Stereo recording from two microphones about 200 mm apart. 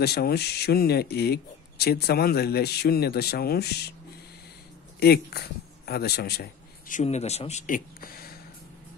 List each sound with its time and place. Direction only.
0.0 s speech: 50° left (ahead or behind)
5.0 s a man's voice: 50° left (ahead or behind)
7.0 s speech: 35° left (ahead or behind)